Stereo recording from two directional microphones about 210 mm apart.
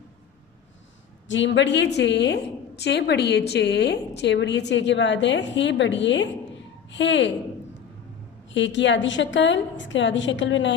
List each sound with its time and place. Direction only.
1.2 s a woman's voice: 60° left (ahead or behind)
8.5 s a woman's voice: 60° left (ahead or behind)